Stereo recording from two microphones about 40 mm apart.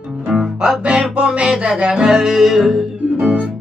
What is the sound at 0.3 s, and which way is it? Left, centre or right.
Music, centre.